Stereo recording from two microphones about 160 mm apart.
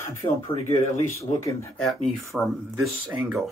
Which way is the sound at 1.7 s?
Centre (ahead or behind).